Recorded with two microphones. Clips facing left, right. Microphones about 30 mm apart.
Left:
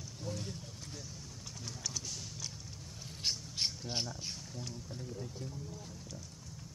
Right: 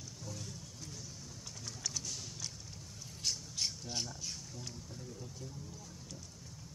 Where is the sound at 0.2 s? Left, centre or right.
Left.